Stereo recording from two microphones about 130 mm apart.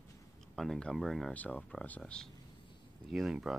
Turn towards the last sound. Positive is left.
turn(degrees=0)  # may be behind; listen again after turning